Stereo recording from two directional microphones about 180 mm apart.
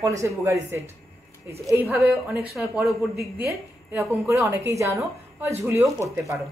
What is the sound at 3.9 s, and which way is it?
A woman's voice, 15° right (ahead or behind).